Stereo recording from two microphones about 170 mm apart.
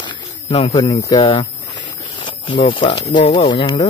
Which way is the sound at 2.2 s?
30° left (ahead or behind).